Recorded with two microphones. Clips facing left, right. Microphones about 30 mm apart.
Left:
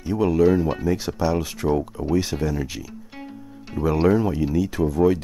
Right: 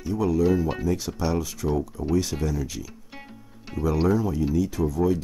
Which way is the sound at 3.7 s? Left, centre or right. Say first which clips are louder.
Left 4 dB; centre.